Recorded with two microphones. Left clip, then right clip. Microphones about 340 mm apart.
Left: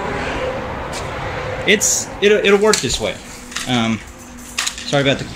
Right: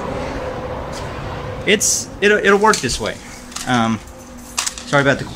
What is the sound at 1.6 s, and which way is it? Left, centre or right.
Speech, centre.